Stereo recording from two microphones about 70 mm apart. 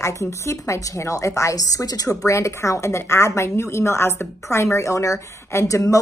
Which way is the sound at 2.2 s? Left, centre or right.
Left.